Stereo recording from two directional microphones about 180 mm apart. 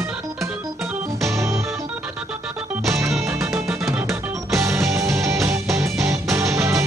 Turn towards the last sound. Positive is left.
turn(degrees=-15)  # may be behind; listen again after turning